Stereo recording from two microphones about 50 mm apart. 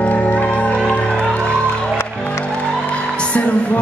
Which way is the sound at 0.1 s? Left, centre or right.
Left.